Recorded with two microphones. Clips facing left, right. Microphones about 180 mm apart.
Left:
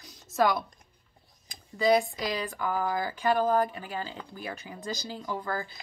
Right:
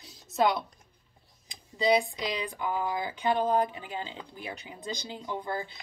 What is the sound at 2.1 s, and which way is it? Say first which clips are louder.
Speech: left 1 dB; 20° right (ahead or behind).